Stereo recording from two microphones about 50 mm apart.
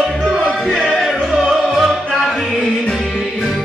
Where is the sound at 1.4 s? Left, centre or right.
Centre.